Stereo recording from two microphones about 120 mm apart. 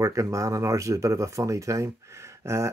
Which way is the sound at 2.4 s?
25° right (ahead or behind).